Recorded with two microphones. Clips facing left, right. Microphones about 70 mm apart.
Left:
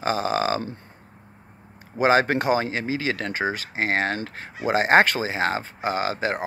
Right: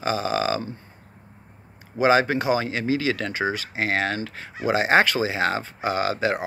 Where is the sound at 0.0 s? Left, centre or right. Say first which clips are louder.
Left 1 dB; left.